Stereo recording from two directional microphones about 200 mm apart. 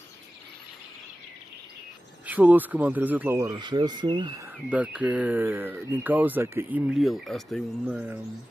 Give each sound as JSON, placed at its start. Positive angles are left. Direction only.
{"t": 2.2, "sound": "speech", "side_deg": -10}
{"t": 4.6, "sound": "speech", "side_deg": -5}